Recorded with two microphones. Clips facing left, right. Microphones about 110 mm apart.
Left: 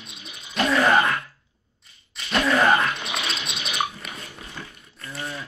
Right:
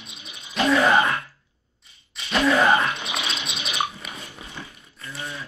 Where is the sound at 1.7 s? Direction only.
Centre (ahead or behind).